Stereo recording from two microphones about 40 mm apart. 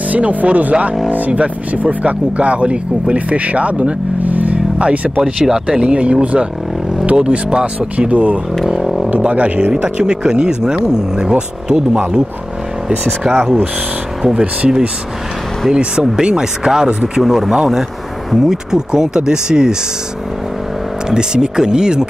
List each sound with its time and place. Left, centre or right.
0.1 s speech: right
5.2 s speech: centre
7.2 s speech: right
8.1 s speech: right
8.6 s didgeridoo: centre
9.2 s speech: right
9.8 s speech: right
14.4 s speech: right
21.1 s speech: centre